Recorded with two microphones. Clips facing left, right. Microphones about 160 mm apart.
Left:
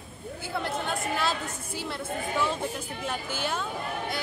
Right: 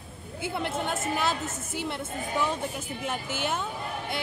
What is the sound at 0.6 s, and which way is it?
Chatter, 20° right (ahead or behind).